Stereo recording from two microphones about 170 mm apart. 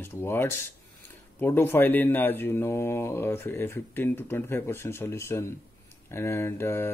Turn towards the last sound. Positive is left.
turn(degrees=15)  # may be behind; listen again after turning